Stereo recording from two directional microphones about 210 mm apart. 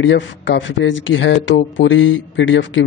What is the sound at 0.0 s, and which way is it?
Speech, 60° left (ahead or behind).